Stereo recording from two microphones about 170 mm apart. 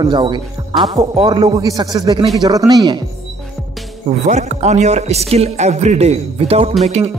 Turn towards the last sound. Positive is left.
turn(degrees=-40)  # may be behind; listen again after turning